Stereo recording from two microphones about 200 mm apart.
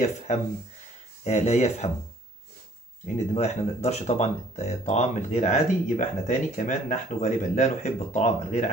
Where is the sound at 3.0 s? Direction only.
35° left (ahead or behind).